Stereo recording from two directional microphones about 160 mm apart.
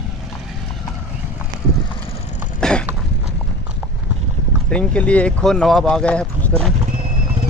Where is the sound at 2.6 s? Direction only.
5° left (ahead or behind).